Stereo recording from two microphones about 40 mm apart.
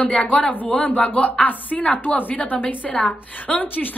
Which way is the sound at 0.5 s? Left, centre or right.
Left.